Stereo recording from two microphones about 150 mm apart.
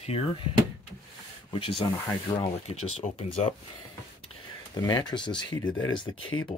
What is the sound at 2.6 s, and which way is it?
Speech, 45° left (ahead or behind).